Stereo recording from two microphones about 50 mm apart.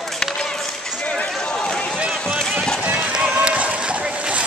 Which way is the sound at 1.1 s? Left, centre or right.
Left.